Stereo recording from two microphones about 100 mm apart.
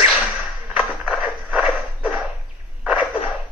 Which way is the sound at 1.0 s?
5° right (ahead or behind).